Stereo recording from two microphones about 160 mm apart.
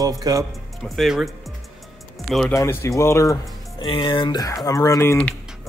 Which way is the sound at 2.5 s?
15° left (ahead or behind).